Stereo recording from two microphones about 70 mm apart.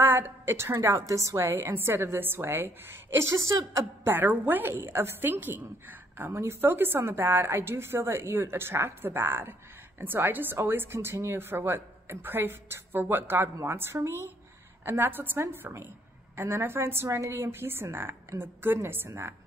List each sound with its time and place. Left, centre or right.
0.0 s speech: right
0.9 s a woman's voice: right
4.1 s a woman's voice: right